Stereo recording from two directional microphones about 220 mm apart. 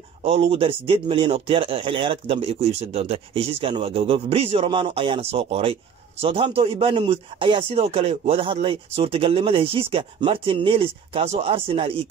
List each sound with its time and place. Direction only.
0.2 s speech: 25° right (ahead or behind)